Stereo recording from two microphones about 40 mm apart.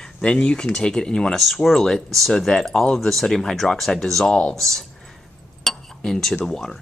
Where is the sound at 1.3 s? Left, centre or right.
Centre.